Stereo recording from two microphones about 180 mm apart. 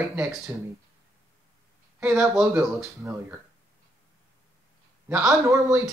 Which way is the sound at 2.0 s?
15° right (ahead or behind).